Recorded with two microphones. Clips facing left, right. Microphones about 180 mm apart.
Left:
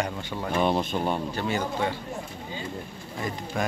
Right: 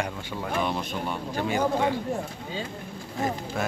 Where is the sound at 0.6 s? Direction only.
30° left (ahead or behind).